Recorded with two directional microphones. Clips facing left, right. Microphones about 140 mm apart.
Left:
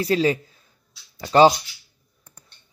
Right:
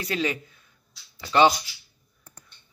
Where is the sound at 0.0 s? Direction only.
35° left (ahead or behind).